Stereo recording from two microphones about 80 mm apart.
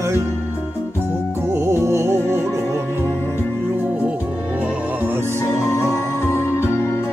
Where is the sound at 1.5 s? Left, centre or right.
Right.